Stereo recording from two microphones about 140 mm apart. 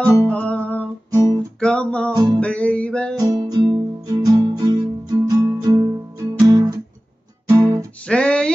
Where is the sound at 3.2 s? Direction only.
25° right (ahead or behind).